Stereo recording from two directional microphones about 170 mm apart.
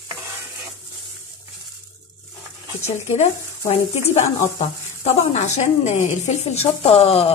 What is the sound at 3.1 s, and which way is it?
Speech, 40° left (ahead or behind).